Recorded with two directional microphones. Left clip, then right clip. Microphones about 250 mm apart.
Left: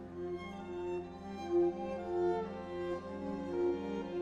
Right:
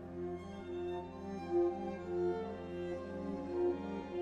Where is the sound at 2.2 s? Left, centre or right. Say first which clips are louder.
Left 2 dB; left.